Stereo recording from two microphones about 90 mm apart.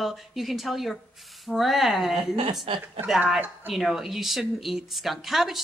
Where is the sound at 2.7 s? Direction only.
90° right.